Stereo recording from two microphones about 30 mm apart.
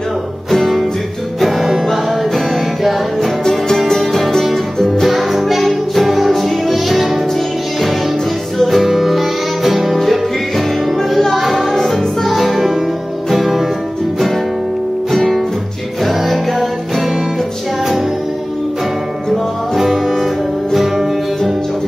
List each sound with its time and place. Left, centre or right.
0.5 s music: centre
4.7 s music: centre
5.0 s music: centre
8.5 s music: centre
11.0 s music: centre
15.0 s music: centre
19.3 s music: centre